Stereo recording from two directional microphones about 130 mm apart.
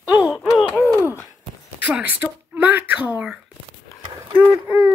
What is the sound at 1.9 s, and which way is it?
Speech, 10° right (ahead or behind).